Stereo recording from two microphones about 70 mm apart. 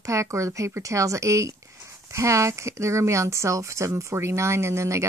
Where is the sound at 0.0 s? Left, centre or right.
Right.